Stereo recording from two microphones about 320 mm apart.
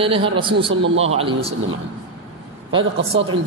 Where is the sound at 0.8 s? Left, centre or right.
Right.